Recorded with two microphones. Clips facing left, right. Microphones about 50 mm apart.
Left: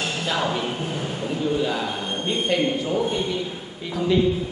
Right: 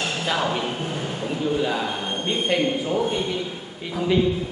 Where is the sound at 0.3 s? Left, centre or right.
Centre.